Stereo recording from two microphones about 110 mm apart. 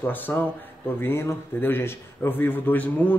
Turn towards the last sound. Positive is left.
turn(degrees=15)  # may be behind; listen again after turning